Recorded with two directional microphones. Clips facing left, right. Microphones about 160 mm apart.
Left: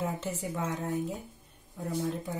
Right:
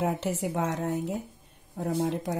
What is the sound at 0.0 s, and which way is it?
Speech, 75° right (ahead or behind).